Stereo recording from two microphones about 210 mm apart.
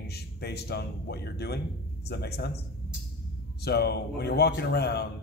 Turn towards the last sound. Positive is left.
turn(degrees=50)  # may be behind; listen again after turning